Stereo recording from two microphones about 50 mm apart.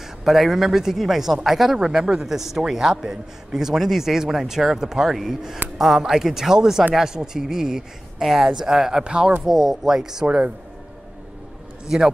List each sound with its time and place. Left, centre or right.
0.0 s speech: centre
10.2 s speech: right